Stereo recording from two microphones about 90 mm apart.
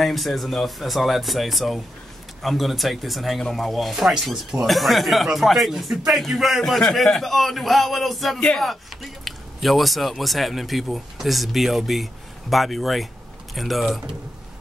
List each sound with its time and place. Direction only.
0.0 s speech: centre (ahead or behind)